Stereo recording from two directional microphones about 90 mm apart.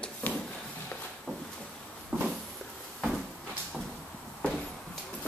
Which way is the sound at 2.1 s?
20° right (ahead or behind).